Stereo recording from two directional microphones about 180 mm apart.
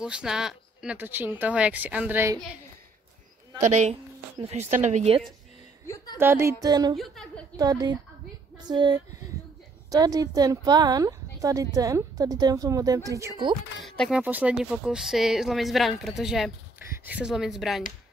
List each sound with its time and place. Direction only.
0.0 s speech: 5° right (ahead or behind)
3.6 s speech: 40° right (ahead or behind)
6.1 s speech: 15° right (ahead or behind)
13.8 s speech: centre (ahead or behind)
14.2 s speech: 10° right (ahead or behind)